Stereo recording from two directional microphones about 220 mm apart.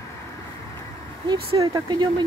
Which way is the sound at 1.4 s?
20° right (ahead or behind).